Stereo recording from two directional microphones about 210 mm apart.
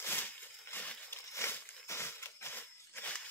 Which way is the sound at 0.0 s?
10° left (ahead or behind).